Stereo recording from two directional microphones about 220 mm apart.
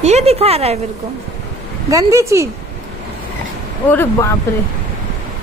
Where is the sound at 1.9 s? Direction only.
15° right (ahead or behind).